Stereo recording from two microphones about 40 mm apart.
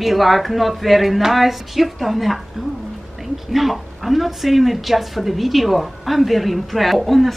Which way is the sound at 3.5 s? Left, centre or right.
Centre.